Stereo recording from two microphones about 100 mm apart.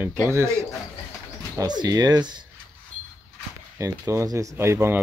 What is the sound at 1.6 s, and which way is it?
Speech, 40° right (ahead or behind).